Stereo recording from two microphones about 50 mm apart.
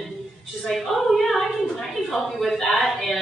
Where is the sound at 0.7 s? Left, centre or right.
Centre.